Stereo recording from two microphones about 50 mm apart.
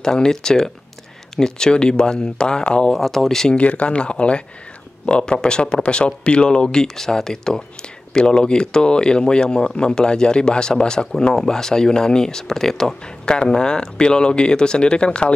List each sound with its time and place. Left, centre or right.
0.0 s speech: centre
2.9 s speech: centre
3.5 s speech: left